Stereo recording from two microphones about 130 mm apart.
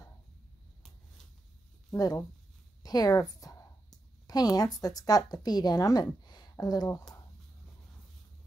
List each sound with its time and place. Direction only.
1.9 s a woman's voice: 25° left (ahead or behind)